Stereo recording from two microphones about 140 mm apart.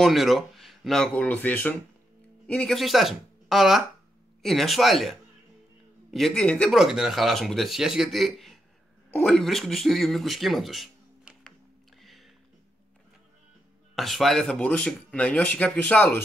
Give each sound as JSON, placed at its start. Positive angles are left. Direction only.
{"t": 0.0, "sound": "a woman's voice", "side_deg": 0}
{"t": 12.0, "sound": "music", "side_deg": 0}
{"t": 13.9, "sound": "speech", "side_deg": 0}